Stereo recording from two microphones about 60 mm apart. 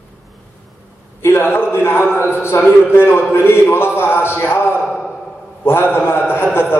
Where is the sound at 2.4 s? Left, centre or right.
Left.